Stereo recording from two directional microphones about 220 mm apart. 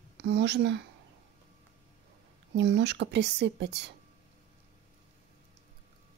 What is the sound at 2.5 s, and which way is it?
A woman's voice, 50° right (ahead or behind).